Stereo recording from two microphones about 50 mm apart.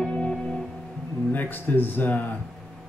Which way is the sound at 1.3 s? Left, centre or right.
Left.